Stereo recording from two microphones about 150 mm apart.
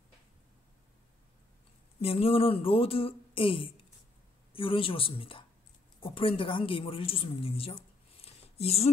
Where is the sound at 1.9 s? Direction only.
40° left (ahead or behind).